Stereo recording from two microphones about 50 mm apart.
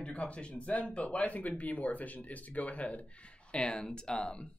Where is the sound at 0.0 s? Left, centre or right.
Left.